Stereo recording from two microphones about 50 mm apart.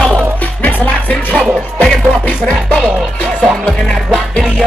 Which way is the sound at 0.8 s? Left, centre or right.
Left.